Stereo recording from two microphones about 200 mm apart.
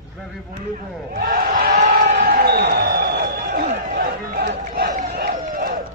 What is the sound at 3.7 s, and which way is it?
Run, 40° right (ahead or behind).